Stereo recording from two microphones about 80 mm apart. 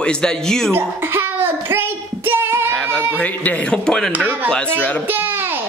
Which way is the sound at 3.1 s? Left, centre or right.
Centre.